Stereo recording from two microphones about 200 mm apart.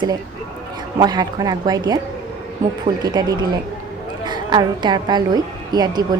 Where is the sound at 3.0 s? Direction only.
20° right (ahead or behind).